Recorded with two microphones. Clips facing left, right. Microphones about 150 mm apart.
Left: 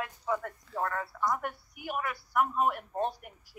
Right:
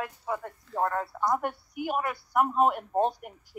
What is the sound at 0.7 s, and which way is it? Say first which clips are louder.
Speech: right 5 dB; 20° right (ahead or behind).